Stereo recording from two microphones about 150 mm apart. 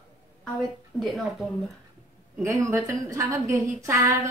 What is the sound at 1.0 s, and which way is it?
Speech, centre (ahead or behind).